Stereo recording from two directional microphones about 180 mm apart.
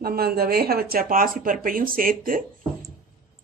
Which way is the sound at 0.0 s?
55° right (ahead or behind).